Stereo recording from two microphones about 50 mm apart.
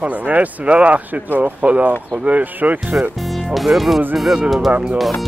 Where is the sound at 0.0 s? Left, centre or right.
Right.